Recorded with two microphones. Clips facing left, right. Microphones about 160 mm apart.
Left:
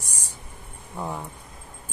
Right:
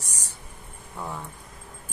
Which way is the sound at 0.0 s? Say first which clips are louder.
Left 1 dB; 10° left (ahead or behind).